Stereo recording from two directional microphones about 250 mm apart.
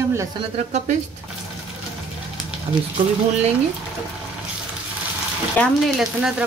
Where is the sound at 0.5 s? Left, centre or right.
Right.